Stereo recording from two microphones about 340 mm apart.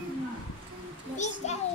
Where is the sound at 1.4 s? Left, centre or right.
Centre.